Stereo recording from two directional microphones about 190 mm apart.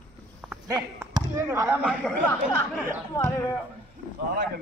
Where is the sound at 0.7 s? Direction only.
15° right (ahead or behind).